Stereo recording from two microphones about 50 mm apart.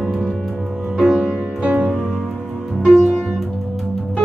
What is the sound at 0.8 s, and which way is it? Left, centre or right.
Music, right.